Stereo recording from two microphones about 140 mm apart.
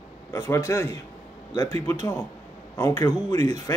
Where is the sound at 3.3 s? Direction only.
55° right (ahead or behind).